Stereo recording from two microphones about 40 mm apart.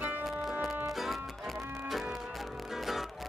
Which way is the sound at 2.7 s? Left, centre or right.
Centre.